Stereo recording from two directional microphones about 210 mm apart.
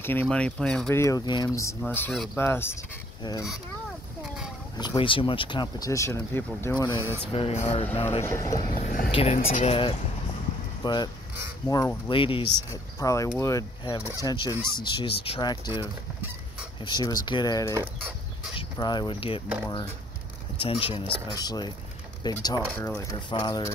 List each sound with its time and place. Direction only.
0.0 s speech: 10° left (ahead or behind)
4.7 s speech: 20° left (ahead or behind)
7.0 s speech: 10° right (ahead or behind)
7.3 s speech: 30° left (ahead or behind)
8.3 s speech: 15° left (ahead or behind)
8.7 s speech: 40° left (ahead or behind)
9.1 s speech: 30° left (ahead or behind)
20.5 s speech: 25° left (ahead or behind)
22.8 s speech: 5° left (ahead or behind)
23.1 s speech: 20° left (ahead or behind)